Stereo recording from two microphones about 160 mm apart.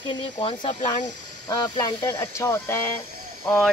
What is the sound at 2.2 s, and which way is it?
Speech, 15° left (ahead or behind).